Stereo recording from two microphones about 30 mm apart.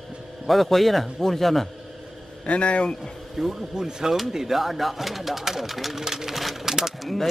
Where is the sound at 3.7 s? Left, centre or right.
Right.